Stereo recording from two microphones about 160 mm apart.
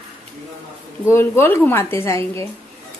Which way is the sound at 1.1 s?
15° left (ahead or behind).